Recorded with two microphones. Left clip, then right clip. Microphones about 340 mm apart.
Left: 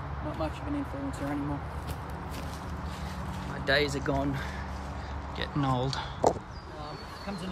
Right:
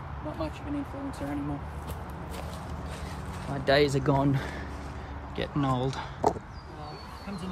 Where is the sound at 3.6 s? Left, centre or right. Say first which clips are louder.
Right 4 dB; right.